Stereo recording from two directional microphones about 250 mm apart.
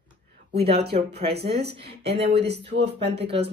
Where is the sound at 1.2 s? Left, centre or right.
Right.